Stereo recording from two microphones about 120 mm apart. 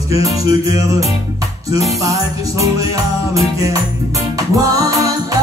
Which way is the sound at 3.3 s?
30° right (ahead or behind).